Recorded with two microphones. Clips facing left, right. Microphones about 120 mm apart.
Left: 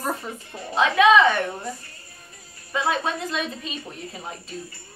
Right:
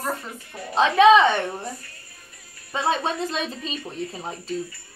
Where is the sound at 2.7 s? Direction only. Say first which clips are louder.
Right 1 dB; 30° right (ahead or behind).